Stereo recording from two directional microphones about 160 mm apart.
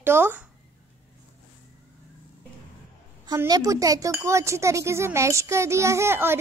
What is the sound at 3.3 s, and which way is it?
Speech, 25° right (ahead or behind).